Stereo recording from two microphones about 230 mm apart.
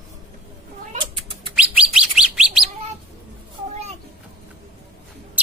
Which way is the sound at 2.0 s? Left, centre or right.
Centre.